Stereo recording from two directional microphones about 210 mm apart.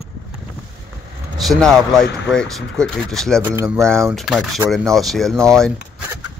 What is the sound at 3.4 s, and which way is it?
Speech, 10° right (ahead or behind).